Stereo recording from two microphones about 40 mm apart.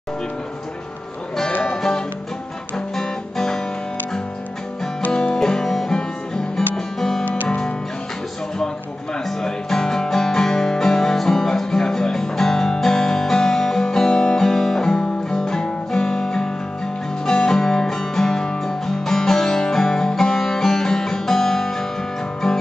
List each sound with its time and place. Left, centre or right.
1.8 s music: centre
5.1 s music: centre
9.4 s music: centre